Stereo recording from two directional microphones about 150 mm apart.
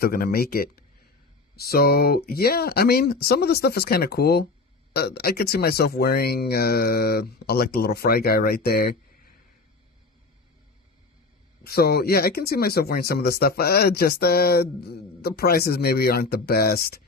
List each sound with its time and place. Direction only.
0.0 s speech: 85° left
11.6 s speech: 90° left